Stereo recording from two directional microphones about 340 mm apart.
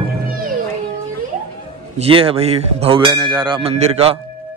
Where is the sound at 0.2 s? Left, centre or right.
Right.